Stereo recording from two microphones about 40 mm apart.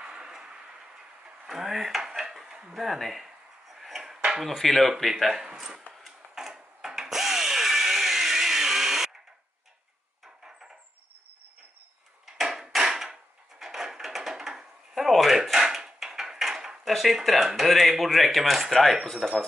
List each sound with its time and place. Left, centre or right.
0.0 s tick-tock: centre
1.5 s cutlery: centre
2.7 s a sound: centre
4.4 s speech: centre
5.1 s speech: centre
6.0 s tools: centre
10.2 s wood: centre
12.4 s wood: centre
15.0 s a sound: centre
15.5 s dishes: centre
16.9 s speech: centre